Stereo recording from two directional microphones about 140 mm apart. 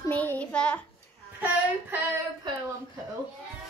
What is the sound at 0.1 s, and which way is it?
Child singing, 10° left (ahead or behind).